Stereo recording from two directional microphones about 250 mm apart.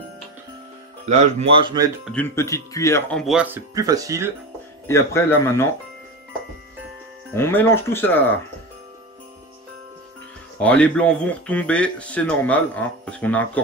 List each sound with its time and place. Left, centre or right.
1.0 s speech: right
2.1 s speech: centre
3.7 s speech: centre
4.8 s speech: centre
7.3 s speech: centre
10.6 s speech: centre